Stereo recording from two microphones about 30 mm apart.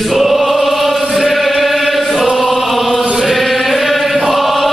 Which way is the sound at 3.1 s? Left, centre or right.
Centre.